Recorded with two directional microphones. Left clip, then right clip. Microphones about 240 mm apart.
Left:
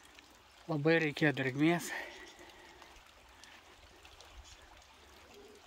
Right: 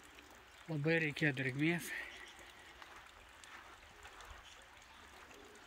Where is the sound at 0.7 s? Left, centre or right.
Centre.